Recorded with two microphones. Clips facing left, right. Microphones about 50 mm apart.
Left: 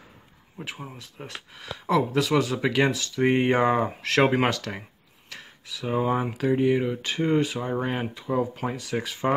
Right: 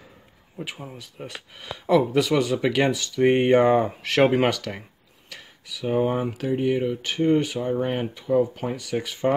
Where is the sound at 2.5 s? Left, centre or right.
Centre.